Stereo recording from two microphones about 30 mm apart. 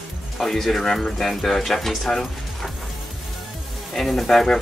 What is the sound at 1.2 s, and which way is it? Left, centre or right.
Speech, centre.